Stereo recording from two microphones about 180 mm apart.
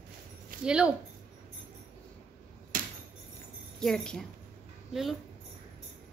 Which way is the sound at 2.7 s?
50° right (ahead or behind).